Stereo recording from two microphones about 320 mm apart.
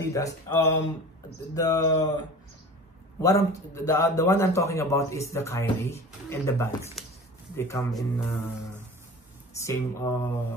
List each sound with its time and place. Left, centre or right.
0.0 s a man's voice: centre
7.0 s a sound: centre
7.5 s a man's voice: centre
9.6 s a man's voice: centre